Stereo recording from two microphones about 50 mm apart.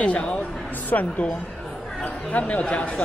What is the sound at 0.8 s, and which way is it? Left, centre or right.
A woman's voice, left.